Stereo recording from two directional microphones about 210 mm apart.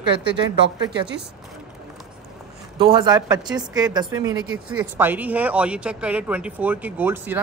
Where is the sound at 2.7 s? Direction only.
25° right (ahead or behind).